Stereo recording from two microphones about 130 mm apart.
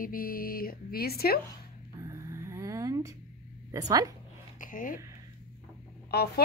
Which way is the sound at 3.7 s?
30° right (ahead or behind).